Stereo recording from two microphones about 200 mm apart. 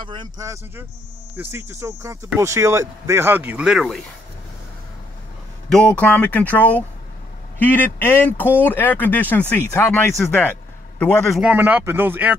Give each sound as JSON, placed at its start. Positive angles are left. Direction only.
{"t": 0.0, "sound": "speech", "side_deg": -25}
{"t": 5.7, "sound": "speech", "side_deg": 5}